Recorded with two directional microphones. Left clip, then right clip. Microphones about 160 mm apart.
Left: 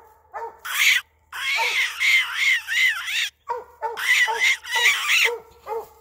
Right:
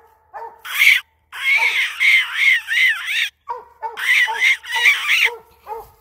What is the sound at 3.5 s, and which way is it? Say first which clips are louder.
Bird: even; 45° right (ahead or behind).